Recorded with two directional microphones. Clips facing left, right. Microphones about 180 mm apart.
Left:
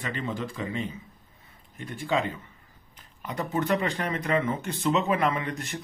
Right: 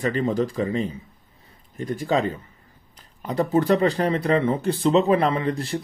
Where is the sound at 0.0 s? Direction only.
40° right (ahead or behind).